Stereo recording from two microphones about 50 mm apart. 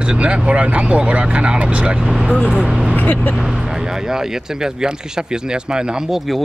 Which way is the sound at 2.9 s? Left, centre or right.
Left.